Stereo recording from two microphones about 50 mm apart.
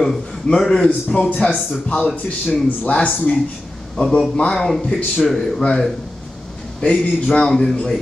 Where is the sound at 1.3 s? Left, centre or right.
Left.